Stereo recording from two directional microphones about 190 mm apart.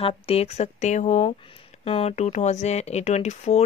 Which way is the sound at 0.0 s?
30° left (ahead or behind).